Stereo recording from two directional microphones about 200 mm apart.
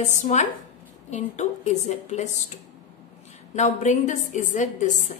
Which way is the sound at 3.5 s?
35° left (ahead or behind).